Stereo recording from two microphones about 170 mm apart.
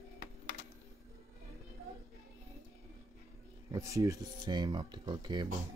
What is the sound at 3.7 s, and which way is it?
Speech, 20° right (ahead or behind).